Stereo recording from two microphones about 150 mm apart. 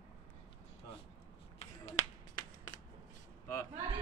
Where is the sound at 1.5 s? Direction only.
45° left (ahead or behind).